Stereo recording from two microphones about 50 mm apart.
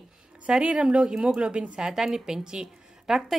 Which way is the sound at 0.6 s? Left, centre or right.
Right.